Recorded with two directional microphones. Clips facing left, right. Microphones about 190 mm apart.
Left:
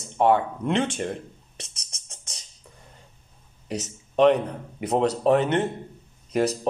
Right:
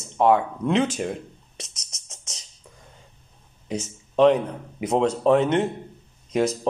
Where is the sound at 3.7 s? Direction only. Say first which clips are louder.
Right 1 dB; centre (ahead or behind).